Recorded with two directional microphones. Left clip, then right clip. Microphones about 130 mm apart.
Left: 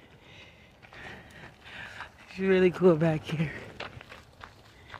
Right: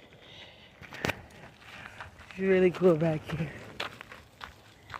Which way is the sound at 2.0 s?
20° right (ahead or behind).